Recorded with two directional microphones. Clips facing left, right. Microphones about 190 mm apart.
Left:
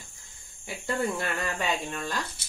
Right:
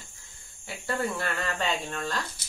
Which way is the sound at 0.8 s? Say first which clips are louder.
Left 1 dB; 20° left (ahead or behind).